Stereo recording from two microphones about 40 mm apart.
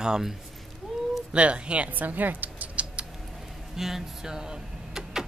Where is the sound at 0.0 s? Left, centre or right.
Centre.